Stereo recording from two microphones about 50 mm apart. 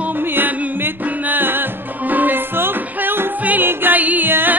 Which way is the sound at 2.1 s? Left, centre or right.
Right.